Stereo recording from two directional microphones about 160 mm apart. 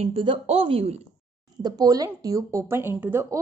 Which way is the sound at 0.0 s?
35° right (ahead or behind).